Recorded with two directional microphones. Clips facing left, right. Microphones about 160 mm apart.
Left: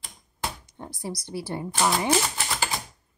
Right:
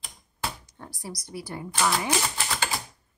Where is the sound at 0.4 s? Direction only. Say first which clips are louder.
Left 1 dB; 25° left (ahead or behind).